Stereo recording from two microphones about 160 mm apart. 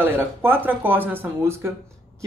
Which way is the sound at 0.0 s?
15° right (ahead or behind).